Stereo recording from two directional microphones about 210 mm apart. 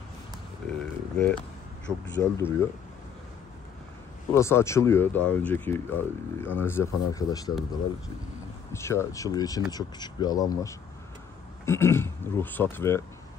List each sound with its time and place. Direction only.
0.7 s a sound: 5° left (ahead or behind)
1.9 s speech: centre (ahead or behind)
2.3 s speech: 15° left (ahead or behind)
4.3 s speech: 10° left (ahead or behind)
8.7 s speech: 15° left (ahead or behind)